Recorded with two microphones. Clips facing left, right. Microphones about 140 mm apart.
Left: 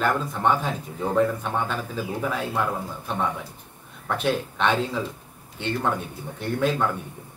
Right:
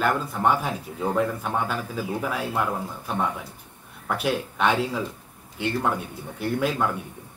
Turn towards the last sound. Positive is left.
turn(degrees=-5)  # may be behind; listen again after turning